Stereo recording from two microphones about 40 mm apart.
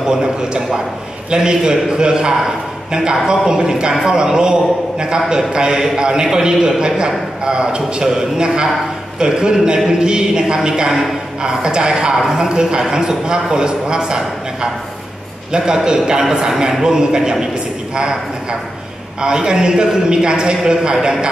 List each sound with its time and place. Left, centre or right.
0.0 s a man's voice: centre